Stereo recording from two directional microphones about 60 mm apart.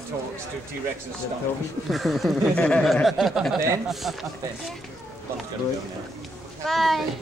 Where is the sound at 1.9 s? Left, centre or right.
Centre.